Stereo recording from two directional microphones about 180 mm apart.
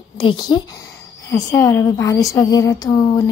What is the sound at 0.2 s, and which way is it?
A woman's voice, 25° left (ahead or behind).